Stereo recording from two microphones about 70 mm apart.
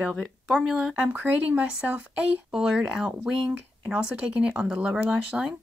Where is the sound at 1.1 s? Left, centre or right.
Right.